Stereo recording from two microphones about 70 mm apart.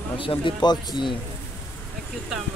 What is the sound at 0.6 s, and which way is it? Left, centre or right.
Speech, left.